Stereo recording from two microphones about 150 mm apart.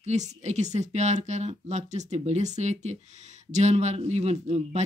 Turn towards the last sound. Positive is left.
turn(degrees=-45)  # may be behind; listen again after turning